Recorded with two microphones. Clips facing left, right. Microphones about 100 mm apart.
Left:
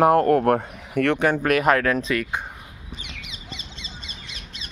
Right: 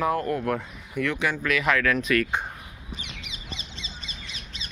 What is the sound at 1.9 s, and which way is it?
Speech, 30° left (ahead or behind).